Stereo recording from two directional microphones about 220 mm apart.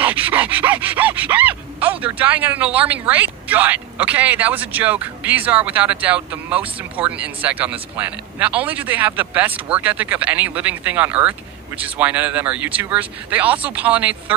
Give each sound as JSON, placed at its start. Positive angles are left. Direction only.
{"t": 0.0, "sound": "groan", "side_deg": -10}